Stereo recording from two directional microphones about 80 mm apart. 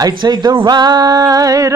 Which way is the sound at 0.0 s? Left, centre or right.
Right.